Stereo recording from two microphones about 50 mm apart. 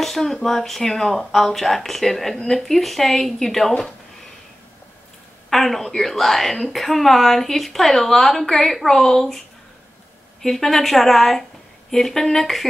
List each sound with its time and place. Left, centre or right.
0.0 s speech: centre
5.5 s a woman's voice: centre
10.4 s speech: centre